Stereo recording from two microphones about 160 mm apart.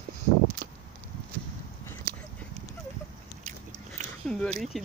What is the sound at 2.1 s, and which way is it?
Clip-clop, 70° right (ahead or behind).